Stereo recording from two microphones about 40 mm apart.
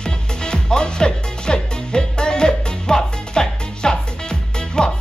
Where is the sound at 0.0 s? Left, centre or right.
Left.